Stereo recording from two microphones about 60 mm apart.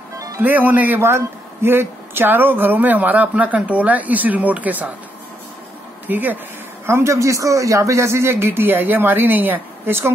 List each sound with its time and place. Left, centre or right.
0.4 s speech: right
1.0 s speech: right
6.0 s speech: right
6.9 s speech: right